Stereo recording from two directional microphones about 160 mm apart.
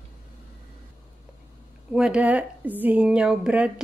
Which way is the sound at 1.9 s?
5° right (ahead or behind).